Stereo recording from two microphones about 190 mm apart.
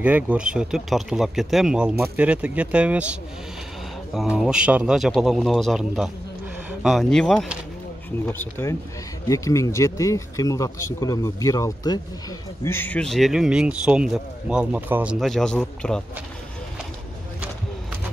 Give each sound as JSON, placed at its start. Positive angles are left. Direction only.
{"t": 0.0, "sound": "speech", "side_deg": -5}